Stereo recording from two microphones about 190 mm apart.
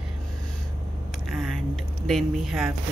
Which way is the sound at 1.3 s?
Centre (ahead or behind).